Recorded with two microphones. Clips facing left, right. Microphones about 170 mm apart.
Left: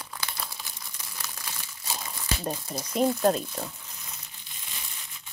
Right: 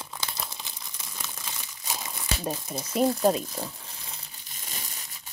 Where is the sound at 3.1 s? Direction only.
Centre (ahead or behind).